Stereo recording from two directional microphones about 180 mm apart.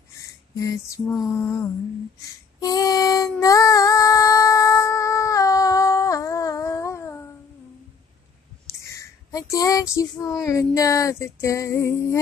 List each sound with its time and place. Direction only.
0.6 s female singing: 20° left (ahead or behind)
1.1 s lullaby: centre (ahead or behind)
2.2 s female singing: 20° left (ahead or behind)
8.7 s speech: 15° left (ahead or behind)